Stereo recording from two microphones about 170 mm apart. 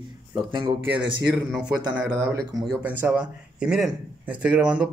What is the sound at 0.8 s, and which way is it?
Speech, 75° right (ahead or behind).